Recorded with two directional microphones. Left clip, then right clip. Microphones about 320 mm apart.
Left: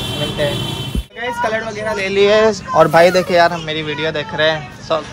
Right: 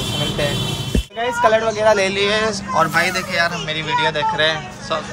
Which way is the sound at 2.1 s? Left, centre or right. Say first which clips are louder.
Left 6 dB; centre.